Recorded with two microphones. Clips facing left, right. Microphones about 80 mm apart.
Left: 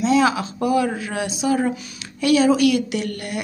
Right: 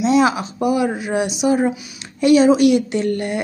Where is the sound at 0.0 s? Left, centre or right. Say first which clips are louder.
Right 2 dB; right.